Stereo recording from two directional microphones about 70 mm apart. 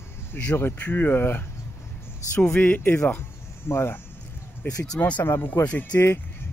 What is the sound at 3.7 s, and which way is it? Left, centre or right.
Speech, left.